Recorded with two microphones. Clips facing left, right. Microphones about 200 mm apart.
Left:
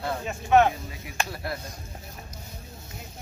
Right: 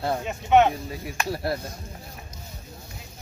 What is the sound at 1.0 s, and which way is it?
Speech, 35° right (ahead or behind).